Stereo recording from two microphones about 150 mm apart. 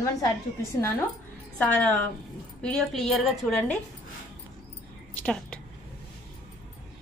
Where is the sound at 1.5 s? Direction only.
10° left (ahead or behind).